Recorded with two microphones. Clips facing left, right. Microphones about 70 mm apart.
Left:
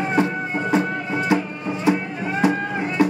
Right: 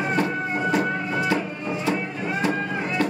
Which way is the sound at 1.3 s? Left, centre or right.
Left.